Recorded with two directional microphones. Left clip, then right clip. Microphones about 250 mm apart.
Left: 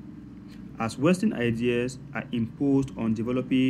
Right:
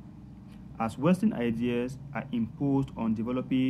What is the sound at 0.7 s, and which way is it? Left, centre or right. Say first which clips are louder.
Speech: left 3 dB; centre.